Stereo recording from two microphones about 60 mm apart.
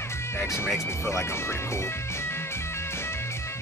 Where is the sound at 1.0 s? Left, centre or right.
Left.